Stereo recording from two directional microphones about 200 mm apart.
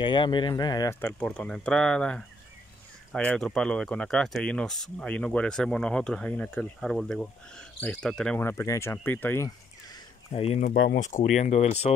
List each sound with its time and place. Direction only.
0.0 s speech: 25° left (ahead or behind)
10.3 s speech: 30° left (ahead or behind)